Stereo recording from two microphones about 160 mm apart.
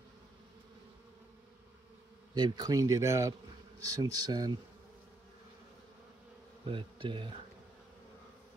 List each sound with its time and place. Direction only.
2.3 s speech: 25° right (ahead or behind)
6.7 s bee: 30° right (ahead or behind)